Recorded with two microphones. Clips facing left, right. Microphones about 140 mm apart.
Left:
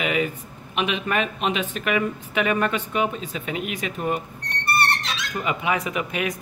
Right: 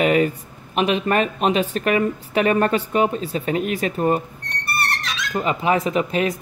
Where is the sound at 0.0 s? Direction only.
40° right (ahead or behind).